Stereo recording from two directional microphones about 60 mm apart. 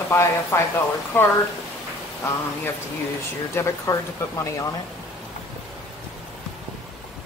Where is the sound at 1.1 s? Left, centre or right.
Left.